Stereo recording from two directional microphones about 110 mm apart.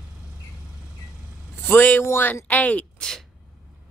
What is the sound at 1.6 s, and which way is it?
Speech, 15° left (ahead or behind).